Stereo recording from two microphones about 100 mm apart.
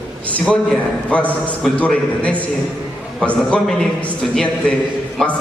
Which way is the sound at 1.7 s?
15° left (ahead or behind).